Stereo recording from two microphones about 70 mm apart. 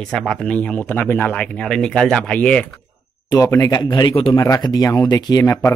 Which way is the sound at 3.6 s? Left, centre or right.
Left.